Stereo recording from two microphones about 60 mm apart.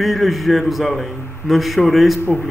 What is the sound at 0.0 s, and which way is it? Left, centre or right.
A man's voice, centre.